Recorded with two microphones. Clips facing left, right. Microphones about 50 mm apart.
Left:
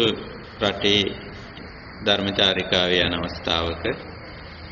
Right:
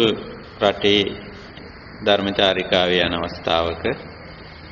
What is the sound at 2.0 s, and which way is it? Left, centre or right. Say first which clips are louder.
A man's voice: right 4 dB; centre.